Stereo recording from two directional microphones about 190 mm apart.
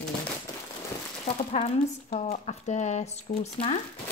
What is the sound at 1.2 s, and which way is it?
A woman's voice, 35° left (ahead or behind).